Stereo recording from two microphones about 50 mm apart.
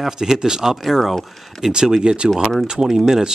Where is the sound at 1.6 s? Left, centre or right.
Centre.